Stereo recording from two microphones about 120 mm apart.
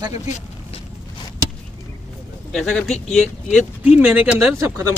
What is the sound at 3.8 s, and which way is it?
Speech, 15° right (ahead or behind).